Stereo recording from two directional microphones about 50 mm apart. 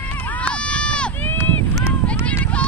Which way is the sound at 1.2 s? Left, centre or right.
Left.